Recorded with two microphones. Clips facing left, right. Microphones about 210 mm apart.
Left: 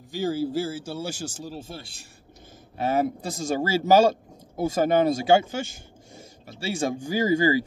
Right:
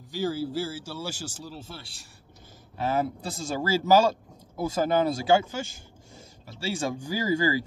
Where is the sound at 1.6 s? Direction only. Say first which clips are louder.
Left 4 dB; 45° left (ahead or behind).